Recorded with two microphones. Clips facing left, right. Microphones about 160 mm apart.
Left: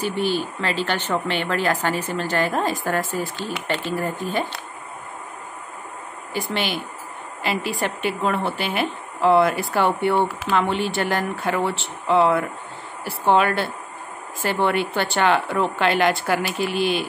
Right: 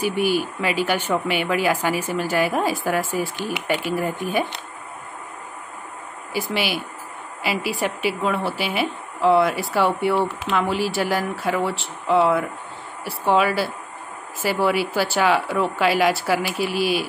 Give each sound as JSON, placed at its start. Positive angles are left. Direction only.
{"t": 0.0, "sound": "speech", "side_deg": -10}
{"t": 6.3, "sound": "a woman's voice", "side_deg": -5}